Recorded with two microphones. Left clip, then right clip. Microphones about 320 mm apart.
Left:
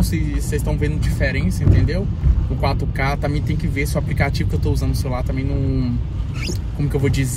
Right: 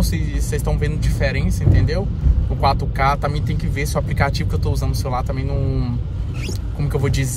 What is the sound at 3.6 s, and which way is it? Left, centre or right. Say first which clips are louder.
Speech: even; centre.